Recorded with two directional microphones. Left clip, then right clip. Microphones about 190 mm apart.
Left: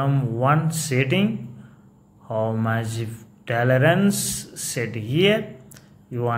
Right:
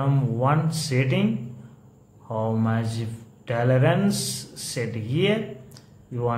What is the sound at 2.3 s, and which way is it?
A man's voice, 15° left (ahead or behind).